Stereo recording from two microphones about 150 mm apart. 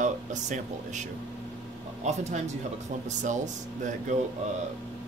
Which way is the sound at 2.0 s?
50° right (ahead or behind).